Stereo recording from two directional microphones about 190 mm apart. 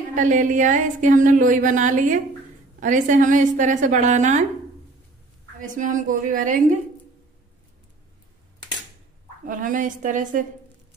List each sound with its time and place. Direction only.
0.1 s a woman's voice: 40° right (ahead or behind)
5.6 s a woman's voice: 45° right (ahead or behind)
9.5 s a woman's voice: 45° right (ahead or behind)